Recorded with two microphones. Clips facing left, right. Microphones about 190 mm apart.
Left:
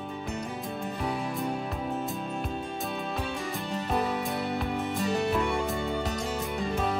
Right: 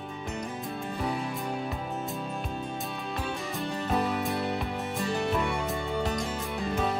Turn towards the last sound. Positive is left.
turn(degrees=0)  # may be behind; listen again after turning